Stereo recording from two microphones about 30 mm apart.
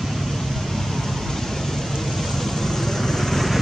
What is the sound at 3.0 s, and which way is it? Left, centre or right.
Vehicle, centre.